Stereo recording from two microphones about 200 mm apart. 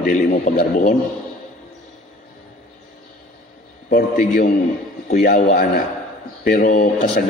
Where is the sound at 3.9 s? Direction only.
45° left (ahead or behind).